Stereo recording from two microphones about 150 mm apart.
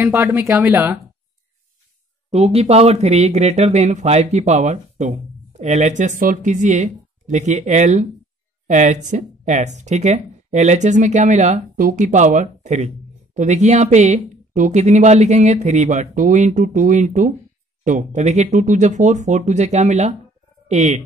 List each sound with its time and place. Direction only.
0.0 s speech: 15° right (ahead or behind)
2.3 s speech: 45° right (ahead or behind)